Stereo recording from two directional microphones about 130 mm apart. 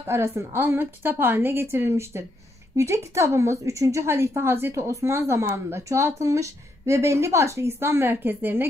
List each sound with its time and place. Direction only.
0.0 s speech: 20° right (ahead or behind)